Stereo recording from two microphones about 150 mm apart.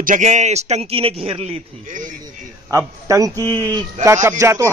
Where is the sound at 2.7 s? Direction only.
20° right (ahead or behind).